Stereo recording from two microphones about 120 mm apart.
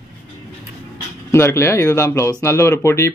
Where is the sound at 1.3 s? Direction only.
20° left (ahead or behind).